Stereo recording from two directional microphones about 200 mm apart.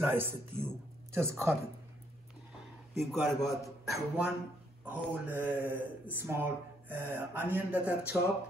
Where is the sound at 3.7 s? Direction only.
Centre (ahead or behind).